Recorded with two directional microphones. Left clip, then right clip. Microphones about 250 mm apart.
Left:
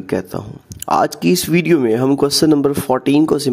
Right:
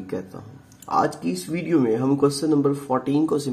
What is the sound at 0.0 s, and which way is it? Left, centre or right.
Speech, left.